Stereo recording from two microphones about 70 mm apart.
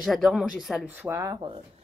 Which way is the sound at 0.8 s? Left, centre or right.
Right.